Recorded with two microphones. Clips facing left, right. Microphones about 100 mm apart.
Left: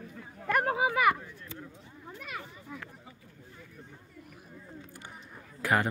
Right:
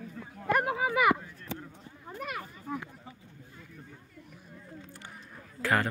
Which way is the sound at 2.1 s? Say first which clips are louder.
Right 5 dB; 55° right (ahead or behind).